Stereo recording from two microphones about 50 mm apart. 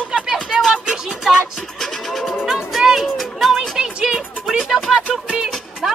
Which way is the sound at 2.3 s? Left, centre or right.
Centre.